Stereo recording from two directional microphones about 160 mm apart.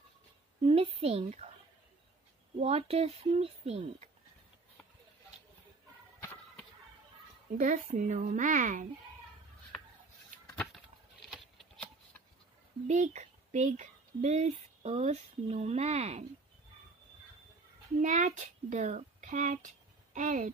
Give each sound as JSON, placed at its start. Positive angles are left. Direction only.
{"t": 0.7, "sound": "speech", "side_deg": -35}
{"t": 2.6, "sound": "speech", "side_deg": -40}
{"t": 7.5, "sound": "speech", "side_deg": -50}
{"t": 10.7, "sound": "a sound", "side_deg": 0}
{"t": 12.8, "sound": "speech", "side_deg": -50}
{"t": 18.0, "sound": "speech", "side_deg": -50}